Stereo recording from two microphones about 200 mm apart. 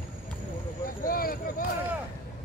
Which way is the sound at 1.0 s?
45° left (ahead or behind).